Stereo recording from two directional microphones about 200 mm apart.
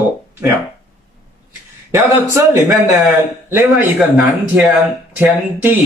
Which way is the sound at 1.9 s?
15° right (ahead or behind).